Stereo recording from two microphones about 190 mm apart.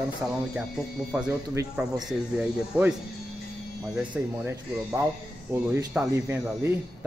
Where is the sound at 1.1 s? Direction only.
5° right (ahead or behind).